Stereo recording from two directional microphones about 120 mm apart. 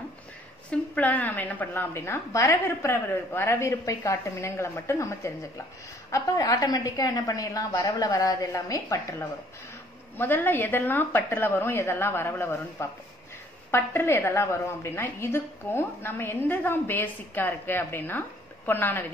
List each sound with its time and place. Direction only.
0.7 s a woman's voice: 15° left (ahead or behind)
10.1 s a woman's voice: 15° left (ahead or behind)